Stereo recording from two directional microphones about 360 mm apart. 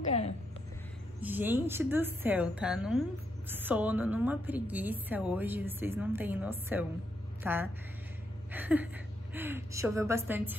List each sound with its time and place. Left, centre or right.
0.0 s music: centre
1.2 s a woman's voice: centre